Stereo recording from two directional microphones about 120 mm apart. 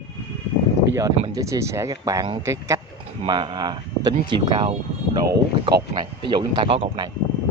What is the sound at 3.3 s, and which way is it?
Speech, 40° right (ahead or behind).